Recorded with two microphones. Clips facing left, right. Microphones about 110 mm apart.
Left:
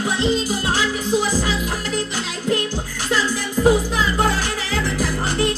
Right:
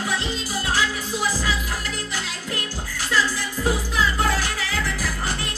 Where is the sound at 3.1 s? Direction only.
25° left (ahead or behind).